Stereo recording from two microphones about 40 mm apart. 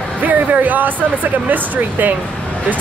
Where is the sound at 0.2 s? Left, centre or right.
Right.